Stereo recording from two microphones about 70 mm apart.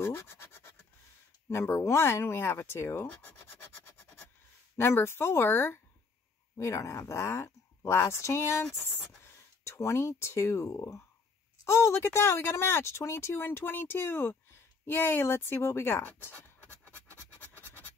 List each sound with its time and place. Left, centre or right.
0.0 s scratch: left
1.5 s speech: left
4.7 s speech: left
6.5 s speech: left
16.0 s speech: left
17.4 s scratch: left